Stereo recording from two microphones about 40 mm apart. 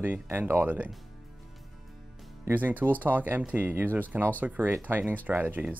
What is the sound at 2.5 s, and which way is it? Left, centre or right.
Speech, right.